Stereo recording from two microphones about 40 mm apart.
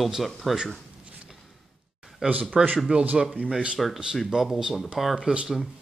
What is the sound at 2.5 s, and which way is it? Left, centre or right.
Speech, right.